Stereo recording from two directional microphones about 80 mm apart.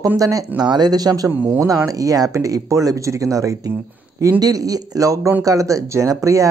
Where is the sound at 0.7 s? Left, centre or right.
Right.